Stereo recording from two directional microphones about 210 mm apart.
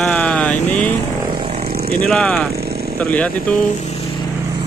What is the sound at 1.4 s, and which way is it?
Vehicle, 25° right (ahead or behind).